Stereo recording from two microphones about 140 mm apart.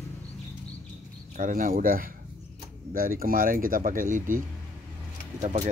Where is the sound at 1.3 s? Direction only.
70° right (ahead or behind).